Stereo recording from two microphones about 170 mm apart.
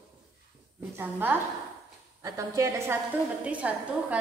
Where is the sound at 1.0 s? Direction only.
10° right (ahead or behind).